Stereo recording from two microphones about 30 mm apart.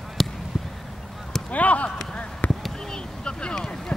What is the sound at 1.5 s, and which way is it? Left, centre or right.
Clip-clop, left.